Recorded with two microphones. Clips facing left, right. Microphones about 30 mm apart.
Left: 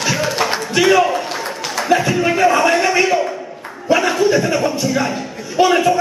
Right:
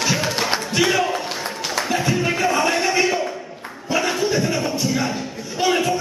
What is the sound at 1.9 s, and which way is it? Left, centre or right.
A man's voice, centre.